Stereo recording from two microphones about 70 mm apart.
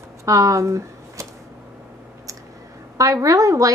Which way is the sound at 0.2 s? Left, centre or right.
Right.